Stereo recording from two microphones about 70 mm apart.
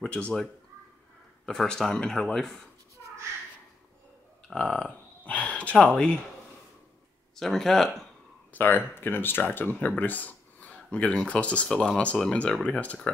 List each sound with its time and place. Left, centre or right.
0.0 s speech: centre
4.5 s speech: centre
7.3 s speech: centre
8.5 s speech: left